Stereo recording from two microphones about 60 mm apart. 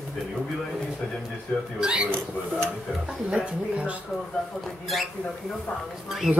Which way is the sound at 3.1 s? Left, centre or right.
Centre.